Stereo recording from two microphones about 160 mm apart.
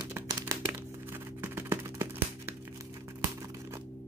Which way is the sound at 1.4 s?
15° right (ahead or behind).